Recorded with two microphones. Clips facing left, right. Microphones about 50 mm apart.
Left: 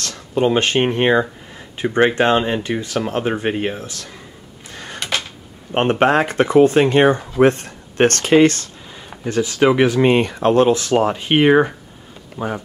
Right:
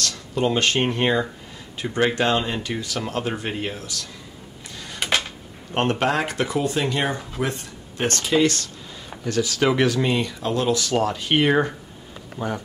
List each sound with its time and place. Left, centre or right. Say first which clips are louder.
0.0 s speech: left 5 dB; left
4.7 s a sound: left 5 dB; left
5.7 s speech: left 6 dB; left
10.0 s speech: left 9 dB; left; by 12.6 s centre